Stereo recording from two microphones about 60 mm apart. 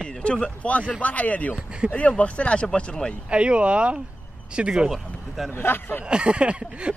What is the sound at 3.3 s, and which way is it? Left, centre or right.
Speech, centre.